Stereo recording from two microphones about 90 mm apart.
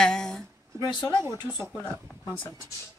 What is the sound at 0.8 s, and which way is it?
Speech, 50° left (ahead or behind).